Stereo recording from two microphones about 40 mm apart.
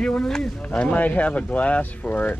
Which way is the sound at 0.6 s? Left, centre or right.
Left.